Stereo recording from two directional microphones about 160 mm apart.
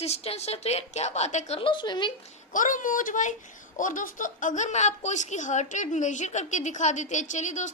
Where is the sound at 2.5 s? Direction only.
55° left (ahead or behind).